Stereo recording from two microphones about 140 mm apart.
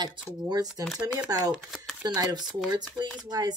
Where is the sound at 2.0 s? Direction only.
30° right (ahead or behind).